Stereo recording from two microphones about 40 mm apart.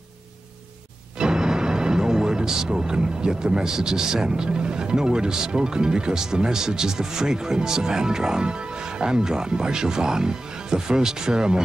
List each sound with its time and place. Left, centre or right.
1.2 s speech: centre